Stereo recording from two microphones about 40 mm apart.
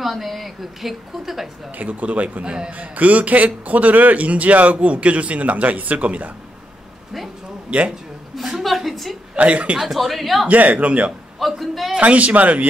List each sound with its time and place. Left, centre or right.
0.0 s a woman's voice: centre
1.8 s a man's voice: right
2.4 s a man's voice: right
2.8 s a man's voice: right
7.7 s a man's voice: right
8.5 s a woman's voice: centre
9.4 s a man's voice: right
9.8 s a woman's voice: centre
10.5 s a man's voice: right
11.3 s a woman's voice: centre
12.0 s a man's voice: right